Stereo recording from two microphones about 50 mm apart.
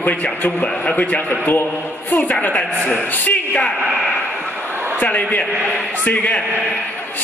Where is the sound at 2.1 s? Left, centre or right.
Left.